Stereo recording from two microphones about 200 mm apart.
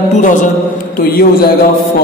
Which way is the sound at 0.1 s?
40° left (ahead or behind).